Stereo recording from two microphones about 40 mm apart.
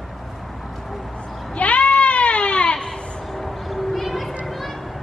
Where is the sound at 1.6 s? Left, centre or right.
Left.